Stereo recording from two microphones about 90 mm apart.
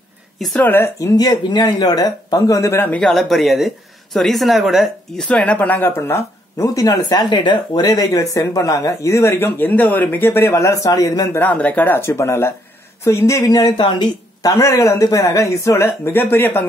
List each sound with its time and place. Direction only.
0.6 s speech: 25° left (ahead or behind)
0.9 s speech: 40° left (ahead or behind)
2.9 s speech: 5° left (ahead or behind)
5.2 s speech: 15° left (ahead or behind); by 7.5 s 55° left (ahead or behind)
7.7 s speech: 45° left (ahead or behind)
10.9 s speech: 45° left (ahead or behind)
11.3 s speech: 20° left (ahead or behind); by 13.7 s 45° left (ahead or behind)
13.7 s a woman's voice: 65° left (ahead or behind)
14.4 s speech: 35° left (ahead or behind); by 16.6 s 20° left (ahead or behind)